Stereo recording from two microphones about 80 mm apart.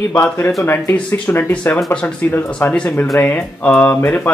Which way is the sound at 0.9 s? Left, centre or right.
Centre.